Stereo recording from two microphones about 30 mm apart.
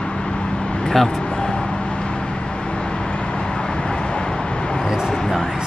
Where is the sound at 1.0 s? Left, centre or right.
Left.